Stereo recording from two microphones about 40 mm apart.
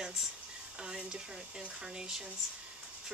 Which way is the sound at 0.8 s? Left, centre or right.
Centre.